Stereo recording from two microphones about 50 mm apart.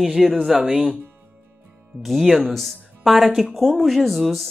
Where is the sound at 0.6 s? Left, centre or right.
Centre.